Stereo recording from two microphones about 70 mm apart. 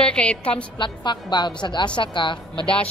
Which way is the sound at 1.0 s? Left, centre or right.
Left.